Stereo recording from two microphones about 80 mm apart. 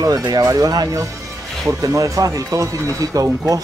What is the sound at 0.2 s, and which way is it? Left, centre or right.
Speech, right.